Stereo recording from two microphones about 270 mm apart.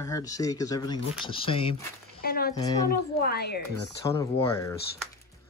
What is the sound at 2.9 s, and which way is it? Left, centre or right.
Speech, left.